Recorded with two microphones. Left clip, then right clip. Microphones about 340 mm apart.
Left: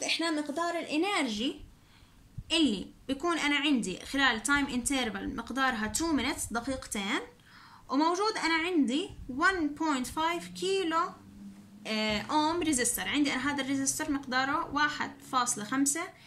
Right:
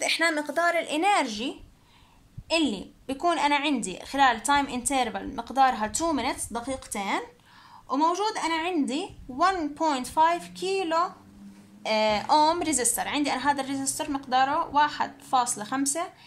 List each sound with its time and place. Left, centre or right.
0.0 s a woman's voice: right